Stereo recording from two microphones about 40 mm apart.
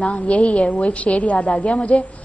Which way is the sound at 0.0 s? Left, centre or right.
Left.